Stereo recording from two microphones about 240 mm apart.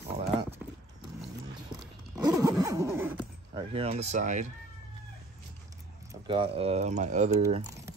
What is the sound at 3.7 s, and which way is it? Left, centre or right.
Speech, right.